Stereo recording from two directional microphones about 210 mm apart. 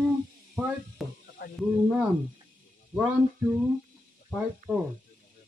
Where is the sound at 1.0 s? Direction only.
Centre (ahead or behind).